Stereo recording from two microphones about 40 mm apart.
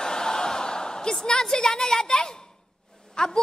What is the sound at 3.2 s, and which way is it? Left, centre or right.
Speech, centre.